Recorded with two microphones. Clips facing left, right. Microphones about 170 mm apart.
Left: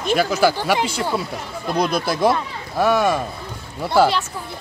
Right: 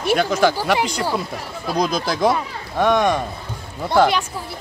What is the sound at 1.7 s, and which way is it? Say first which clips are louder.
Speech: even; 5° left (ahead or behind).